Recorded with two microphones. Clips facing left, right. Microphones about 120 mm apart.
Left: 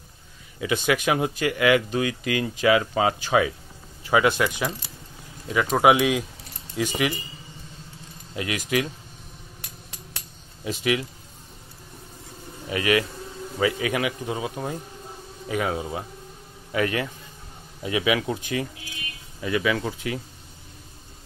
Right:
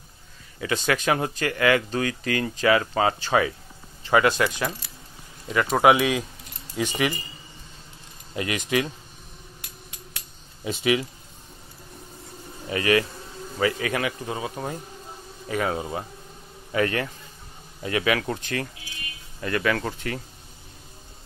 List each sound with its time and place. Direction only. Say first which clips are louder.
0.6 s speech: left 1 dB; 15° left (ahead or behind)
5.8 s speech: even; 5° left (ahead or behind)
8.4 s speech: right 1 dB; centre (ahead or behind)
10.6 s speech: right 1 dB; centre (ahead or behind)
12.6 s speech: right 1 dB; 10° left (ahead or behind)
15.7 s speech: even; centre (ahead or behind)